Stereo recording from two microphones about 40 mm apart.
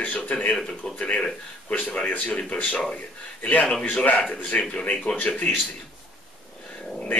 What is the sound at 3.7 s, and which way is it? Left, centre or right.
A man's voice, left.